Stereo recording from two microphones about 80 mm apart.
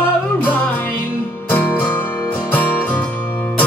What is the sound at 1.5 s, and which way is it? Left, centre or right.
Music, left.